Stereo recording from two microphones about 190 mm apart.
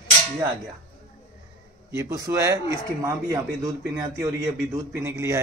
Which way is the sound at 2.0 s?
15° right (ahead or behind).